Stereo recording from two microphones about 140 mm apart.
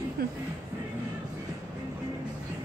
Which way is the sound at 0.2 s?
90° right.